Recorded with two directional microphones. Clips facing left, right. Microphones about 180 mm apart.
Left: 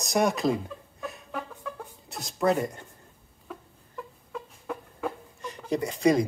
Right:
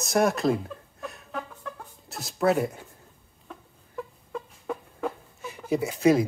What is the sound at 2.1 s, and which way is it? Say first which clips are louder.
Speech: right 1 dB; centre (ahead or behind).